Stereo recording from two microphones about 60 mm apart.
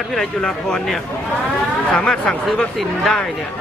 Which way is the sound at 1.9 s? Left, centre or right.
Centre.